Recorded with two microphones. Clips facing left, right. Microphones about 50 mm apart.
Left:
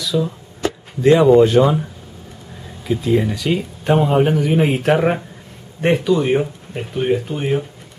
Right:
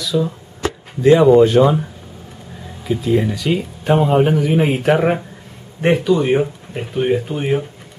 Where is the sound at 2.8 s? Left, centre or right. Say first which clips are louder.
Even; centre.